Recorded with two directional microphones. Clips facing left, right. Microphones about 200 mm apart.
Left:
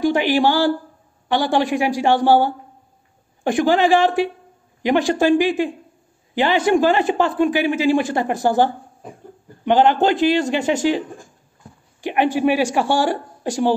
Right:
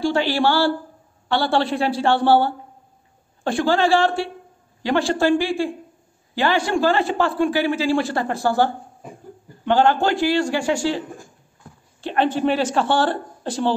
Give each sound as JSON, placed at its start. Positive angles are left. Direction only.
{"t": 0.0, "sound": "a man's voice", "side_deg": 15}